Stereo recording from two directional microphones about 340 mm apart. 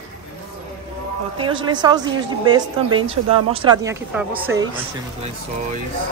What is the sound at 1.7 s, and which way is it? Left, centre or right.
Speech, centre.